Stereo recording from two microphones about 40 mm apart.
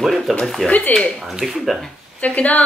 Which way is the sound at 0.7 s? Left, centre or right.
Left.